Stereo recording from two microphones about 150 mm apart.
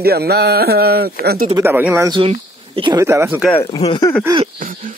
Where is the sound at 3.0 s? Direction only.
15° right (ahead or behind).